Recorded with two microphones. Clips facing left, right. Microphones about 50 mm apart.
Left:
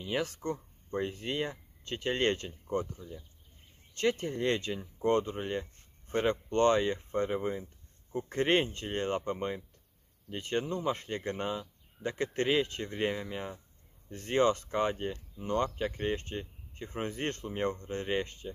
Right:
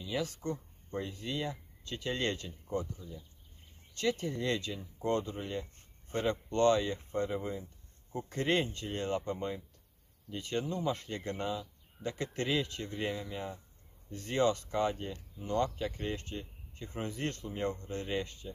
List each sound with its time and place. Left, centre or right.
0.0 s speech: left
3.9 s speech: left